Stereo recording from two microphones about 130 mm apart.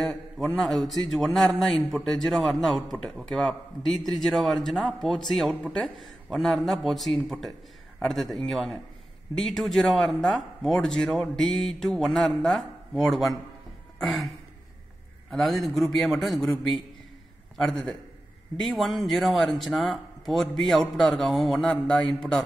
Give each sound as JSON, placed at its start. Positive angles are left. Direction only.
{"t": 0.0, "sound": "a man's voice", "side_deg": 0}
{"t": 13.9, "sound": "a sound", "side_deg": 0}
{"t": 15.3, "sound": "a man's voice", "side_deg": 0}